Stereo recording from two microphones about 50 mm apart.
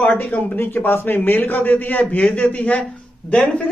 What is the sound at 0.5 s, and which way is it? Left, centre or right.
Speech, left.